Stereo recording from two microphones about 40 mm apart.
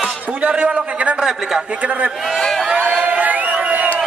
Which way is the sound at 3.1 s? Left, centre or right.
Right.